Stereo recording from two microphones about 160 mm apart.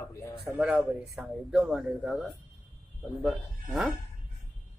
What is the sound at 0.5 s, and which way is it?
Speech, centre (ahead or behind).